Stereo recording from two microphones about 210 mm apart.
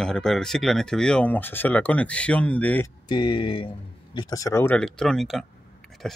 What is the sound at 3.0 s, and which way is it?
Speech, 20° left (ahead or behind).